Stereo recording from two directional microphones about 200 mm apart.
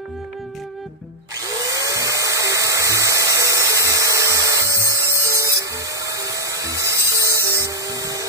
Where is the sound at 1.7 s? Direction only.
15° right (ahead or behind).